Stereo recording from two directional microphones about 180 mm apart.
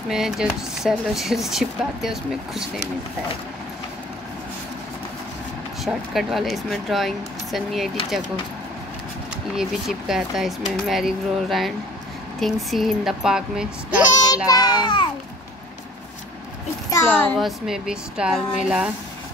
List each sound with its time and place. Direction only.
0.1 s speech: 5° right (ahead or behind)
5.9 s speech: centre (ahead or behind)
9.6 s speech: centre (ahead or behind)
14.2 s a child's voice: 20° left (ahead or behind)
16.9 s a child's voice: 10° left (ahead or behind)
17.4 s speech: centre (ahead or behind)